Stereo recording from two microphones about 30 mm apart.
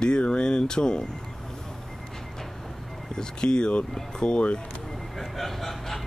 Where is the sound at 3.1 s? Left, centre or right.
Left.